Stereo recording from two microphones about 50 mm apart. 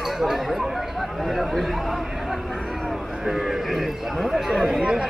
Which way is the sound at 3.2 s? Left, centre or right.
Centre.